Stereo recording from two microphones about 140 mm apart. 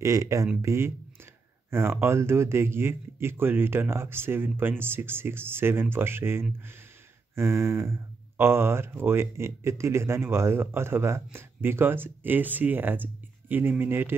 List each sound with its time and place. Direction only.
0.0 s speech: 20° right (ahead or behind)